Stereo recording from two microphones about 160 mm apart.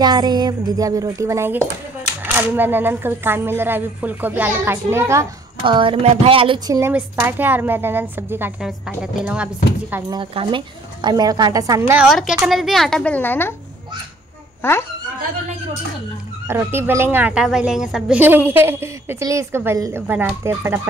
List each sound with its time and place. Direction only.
0.0 s a woman's voice: 25° right (ahead or behind)
5.6 s speech: 30° right (ahead or behind)
6.7 s a woman's voice: 15° right (ahead or behind)
10.0 s a woman's voice: 30° right (ahead or behind)
12.0 s a woman's voice: centre (ahead or behind)
14.6 s speech: 15° left (ahead or behind)
16.4 s a woman's voice: 15° right (ahead or behind)